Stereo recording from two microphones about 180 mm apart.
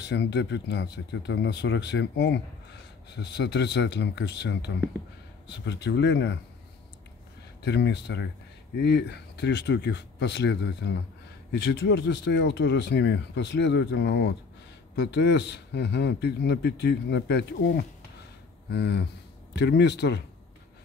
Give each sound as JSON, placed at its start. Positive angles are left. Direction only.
{"t": 0.0, "sound": "speech", "side_deg": 70}
{"t": 5.7, "sound": "speech", "side_deg": 70}
{"t": 7.6, "sound": "speech", "side_deg": 70}